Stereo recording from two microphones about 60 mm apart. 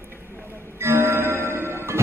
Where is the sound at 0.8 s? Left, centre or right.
Right.